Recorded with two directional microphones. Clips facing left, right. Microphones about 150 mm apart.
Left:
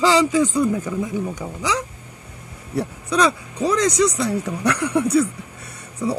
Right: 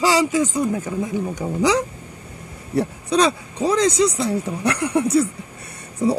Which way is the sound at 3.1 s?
30° right (ahead or behind).